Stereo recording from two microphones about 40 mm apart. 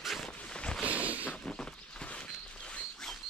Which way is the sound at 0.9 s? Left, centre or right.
Right.